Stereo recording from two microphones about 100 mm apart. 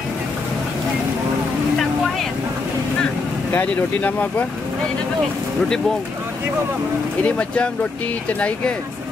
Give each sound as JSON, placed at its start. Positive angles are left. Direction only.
{"t": 3.5, "sound": "speech", "side_deg": 15}
{"t": 7.2, "sound": "speech", "side_deg": 10}